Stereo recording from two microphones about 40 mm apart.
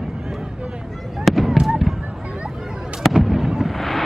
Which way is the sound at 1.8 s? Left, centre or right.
Centre.